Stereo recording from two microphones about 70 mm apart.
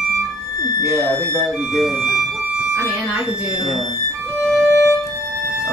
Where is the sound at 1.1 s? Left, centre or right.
Right.